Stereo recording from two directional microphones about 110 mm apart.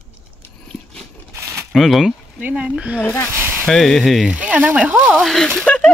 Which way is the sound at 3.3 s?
20° right (ahead or behind).